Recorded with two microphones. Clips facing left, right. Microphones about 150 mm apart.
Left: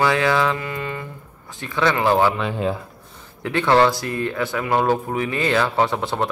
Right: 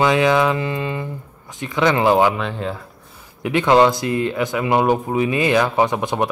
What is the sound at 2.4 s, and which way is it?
Speech, 10° left (ahead or behind).